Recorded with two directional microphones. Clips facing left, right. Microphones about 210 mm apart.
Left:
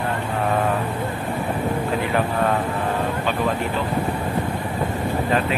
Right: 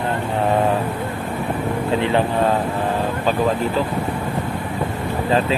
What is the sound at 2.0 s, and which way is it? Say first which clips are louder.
Speech: right 6 dB; 25° right (ahead or behind).